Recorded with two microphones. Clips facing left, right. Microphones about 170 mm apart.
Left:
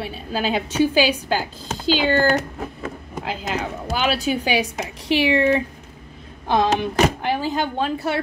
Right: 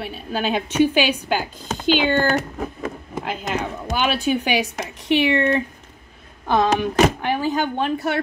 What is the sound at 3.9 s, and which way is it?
A woman's voice, 35° left (ahead or behind).